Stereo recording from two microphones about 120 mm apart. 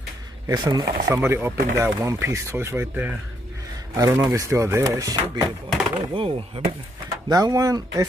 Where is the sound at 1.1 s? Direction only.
20° right (ahead or behind).